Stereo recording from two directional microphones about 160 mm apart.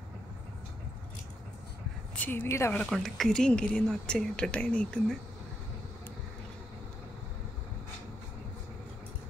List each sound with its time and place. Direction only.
2.1 s a woman's voice: 10° left (ahead or behind)
2.8 s a woman's voice: centre (ahead or behind)